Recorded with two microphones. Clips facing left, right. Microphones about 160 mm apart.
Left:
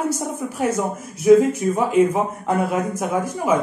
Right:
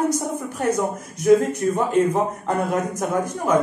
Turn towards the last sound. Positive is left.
turn(degrees=5)  # may be behind; listen again after turning